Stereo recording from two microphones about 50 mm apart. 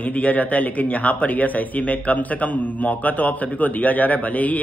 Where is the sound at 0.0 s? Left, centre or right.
Left.